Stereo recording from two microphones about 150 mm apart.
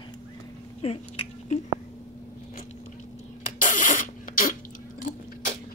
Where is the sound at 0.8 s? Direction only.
40° left (ahead or behind).